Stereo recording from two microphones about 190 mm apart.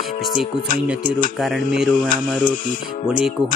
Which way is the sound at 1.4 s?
Centre (ahead or behind).